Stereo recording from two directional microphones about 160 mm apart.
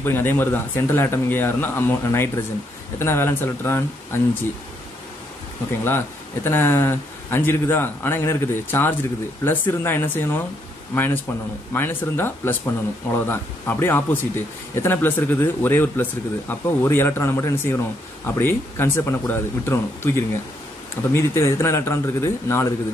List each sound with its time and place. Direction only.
0.0 s speech: 15° left (ahead or behind)
5.9 s speech: 15° left (ahead or behind)
11.7 s speech: 15° left (ahead or behind)